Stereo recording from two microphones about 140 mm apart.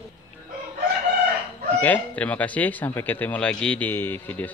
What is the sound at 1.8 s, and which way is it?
Speech, 10° left (ahead or behind).